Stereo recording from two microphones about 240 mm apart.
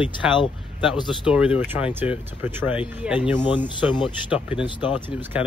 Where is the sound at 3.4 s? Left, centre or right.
Centre.